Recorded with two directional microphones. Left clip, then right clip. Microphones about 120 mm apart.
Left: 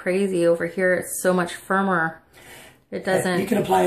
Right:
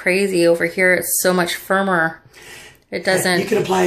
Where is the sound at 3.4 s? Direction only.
15° left (ahead or behind).